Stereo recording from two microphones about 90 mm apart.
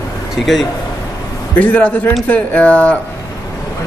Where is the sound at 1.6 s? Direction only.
15° left (ahead or behind).